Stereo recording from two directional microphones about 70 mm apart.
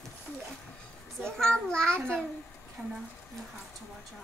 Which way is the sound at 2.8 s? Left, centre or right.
Centre.